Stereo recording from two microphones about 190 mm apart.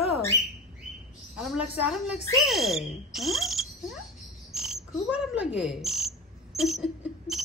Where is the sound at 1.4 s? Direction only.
5° right (ahead or behind).